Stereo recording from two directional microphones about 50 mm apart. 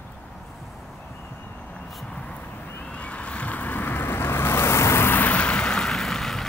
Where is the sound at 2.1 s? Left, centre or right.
Left.